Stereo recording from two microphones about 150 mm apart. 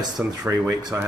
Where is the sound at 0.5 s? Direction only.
25° right (ahead or behind).